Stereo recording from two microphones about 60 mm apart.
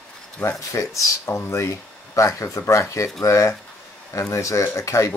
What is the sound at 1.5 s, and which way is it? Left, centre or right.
Speech, left.